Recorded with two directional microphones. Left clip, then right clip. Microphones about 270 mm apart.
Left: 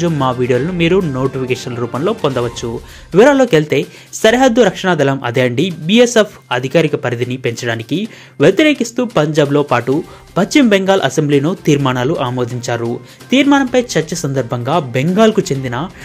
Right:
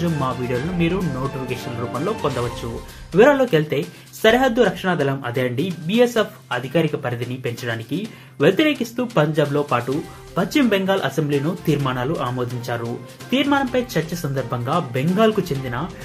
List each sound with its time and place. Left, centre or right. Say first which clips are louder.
0.0 s speech: left 8 dB; left
2.0 s speech: left 8 dB; left